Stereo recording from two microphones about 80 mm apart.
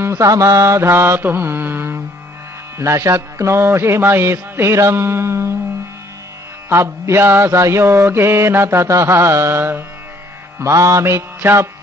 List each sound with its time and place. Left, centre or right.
0.2 s mantra: right
6.7 s mantra: right
10.6 s mantra: right